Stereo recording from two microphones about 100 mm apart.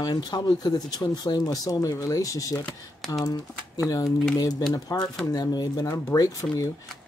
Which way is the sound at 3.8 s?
35° left (ahead or behind).